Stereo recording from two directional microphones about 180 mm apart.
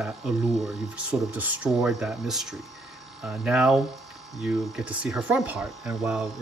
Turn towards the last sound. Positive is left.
turn(degrees=-5)  # may be behind; listen again after turning